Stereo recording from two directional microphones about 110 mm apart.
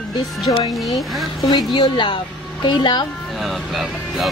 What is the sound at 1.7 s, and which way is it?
A woman's voice, 45° left (ahead or behind).